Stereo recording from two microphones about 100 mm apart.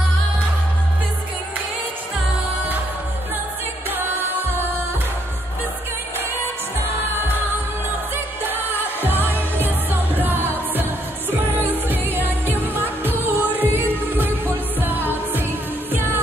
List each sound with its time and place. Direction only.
3.9 s music: 20° right (ahead or behind)
8.5 s music of asia: 20° right (ahead or behind)
10.1 s music: 20° right (ahead or behind)
10.8 s music of asia: 20° right (ahead or behind)
13.0 s music: 20° right (ahead or behind)